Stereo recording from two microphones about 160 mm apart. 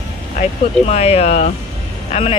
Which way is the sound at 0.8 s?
40° left (ahead or behind).